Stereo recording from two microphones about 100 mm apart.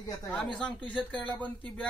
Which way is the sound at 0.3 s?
10° left (ahead or behind).